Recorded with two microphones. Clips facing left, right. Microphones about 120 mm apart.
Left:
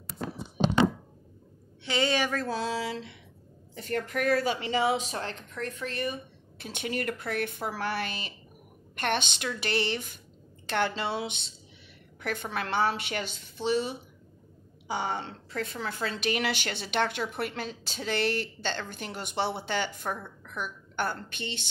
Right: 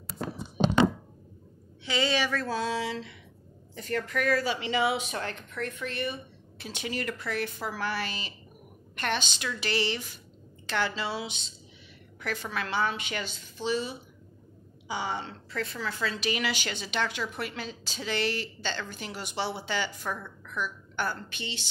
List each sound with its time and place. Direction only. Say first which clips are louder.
1.9 s a woman's voice: left 1 dB; 45° left (ahead or behind)
2.6 s a woman's voice: right 1 dB; 35° left (ahead or behind)
6.6 s a woman's voice: left 2 dB; 55° left (ahead or behind)